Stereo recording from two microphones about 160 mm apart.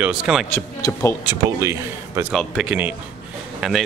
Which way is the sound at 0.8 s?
15° left (ahead or behind).